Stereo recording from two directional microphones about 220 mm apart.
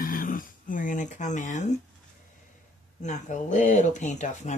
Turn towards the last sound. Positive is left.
turn(degrees=35)  # may be behind; listen again after turning